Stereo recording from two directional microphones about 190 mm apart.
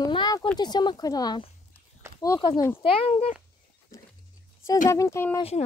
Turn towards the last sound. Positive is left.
turn(degrees=30)  # may be behind; listen again after turning